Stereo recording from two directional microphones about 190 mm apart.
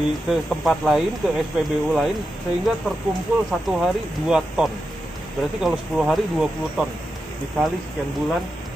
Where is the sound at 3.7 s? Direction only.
5° right (ahead or behind).